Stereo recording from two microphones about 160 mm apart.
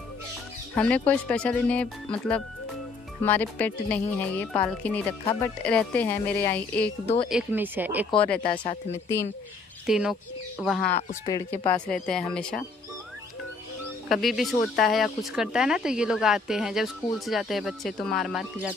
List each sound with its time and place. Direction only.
0.7 s speech: 10° left (ahead or behind)
7.2 s speech: 10° right (ahead or behind)
8.4 s speech: 30° left (ahead or behind)
9.8 s speech: 5° right (ahead or behind)
11.2 s speech: 25° left (ahead or behind)
11.9 s speech: 5° left (ahead or behind)
14.0 s speech: centre (ahead or behind)